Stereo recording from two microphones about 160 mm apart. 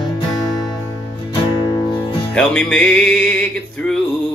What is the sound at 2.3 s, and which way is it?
Music, 5° left (ahead or behind).